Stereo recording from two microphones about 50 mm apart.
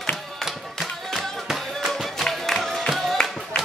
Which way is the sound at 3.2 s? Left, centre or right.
Centre.